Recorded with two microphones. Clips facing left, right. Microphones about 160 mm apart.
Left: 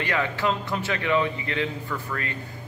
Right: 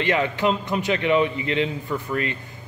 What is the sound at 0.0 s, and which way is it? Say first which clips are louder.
A man's voice: right 4 dB; 20° right (ahead or behind).